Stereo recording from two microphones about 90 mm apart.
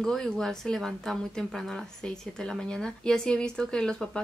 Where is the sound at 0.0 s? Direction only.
5° left (ahead or behind).